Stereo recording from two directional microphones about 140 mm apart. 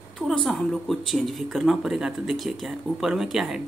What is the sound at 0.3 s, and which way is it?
Speech, 5° left (ahead or behind).